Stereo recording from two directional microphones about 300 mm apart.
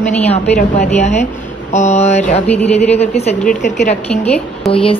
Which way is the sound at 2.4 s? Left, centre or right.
Centre.